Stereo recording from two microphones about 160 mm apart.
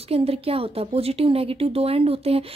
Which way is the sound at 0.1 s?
40° right (ahead or behind).